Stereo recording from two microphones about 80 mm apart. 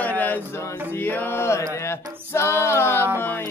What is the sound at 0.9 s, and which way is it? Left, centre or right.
Mantra, left.